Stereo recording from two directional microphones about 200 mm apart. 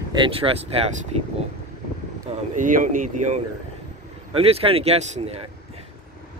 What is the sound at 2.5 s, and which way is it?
Speech, 40° right (ahead or behind).